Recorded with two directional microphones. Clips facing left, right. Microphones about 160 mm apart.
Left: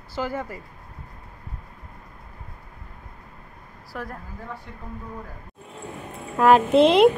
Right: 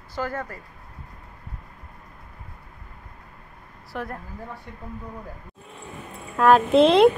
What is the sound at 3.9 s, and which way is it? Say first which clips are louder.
Speech: right 2 dB; centre (ahead or behind).